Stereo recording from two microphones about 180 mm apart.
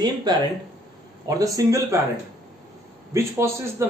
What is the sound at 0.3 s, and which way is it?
Speech, 25° right (ahead or behind).